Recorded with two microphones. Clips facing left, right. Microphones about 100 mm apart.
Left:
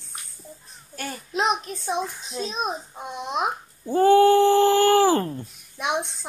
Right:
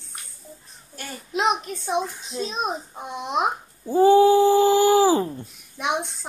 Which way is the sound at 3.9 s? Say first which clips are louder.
Right 1 dB; 5° right (ahead or behind).